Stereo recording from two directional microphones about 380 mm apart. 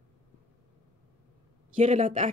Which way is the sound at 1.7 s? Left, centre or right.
Centre.